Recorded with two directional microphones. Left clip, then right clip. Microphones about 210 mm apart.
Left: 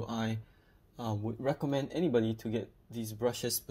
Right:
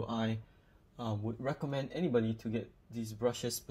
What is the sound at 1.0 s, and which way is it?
Speech, 10° left (ahead or behind).